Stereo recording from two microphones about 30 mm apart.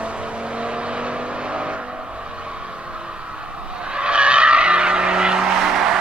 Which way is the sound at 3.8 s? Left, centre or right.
Right.